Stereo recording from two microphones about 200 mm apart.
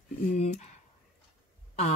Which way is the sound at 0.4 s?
35° left (ahead or behind).